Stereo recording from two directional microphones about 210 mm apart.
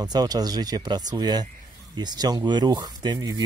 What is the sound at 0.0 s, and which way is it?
Speech, 20° right (ahead or behind).